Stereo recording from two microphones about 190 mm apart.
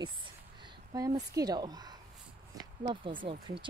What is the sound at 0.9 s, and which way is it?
Speech, 20° right (ahead or behind).